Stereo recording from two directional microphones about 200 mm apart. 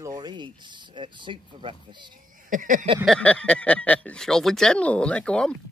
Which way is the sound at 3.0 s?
5° left (ahead or behind).